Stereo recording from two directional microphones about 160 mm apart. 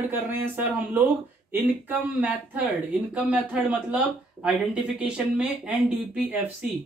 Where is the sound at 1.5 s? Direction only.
10° right (ahead or behind).